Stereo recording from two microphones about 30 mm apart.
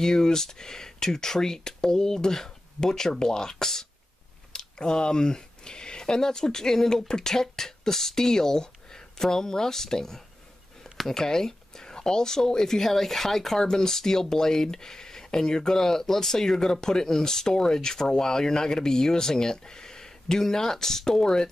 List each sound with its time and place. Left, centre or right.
0.0 s speech: centre